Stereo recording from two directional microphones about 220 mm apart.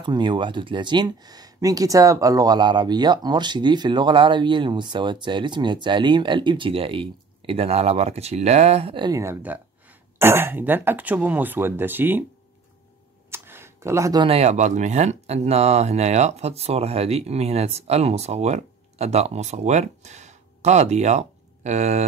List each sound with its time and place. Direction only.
0.0 s speech: 20° right (ahead or behind)
13.3 s speech: 10° right (ahead or behind); by 22.0 s 30° right (ahead or behind)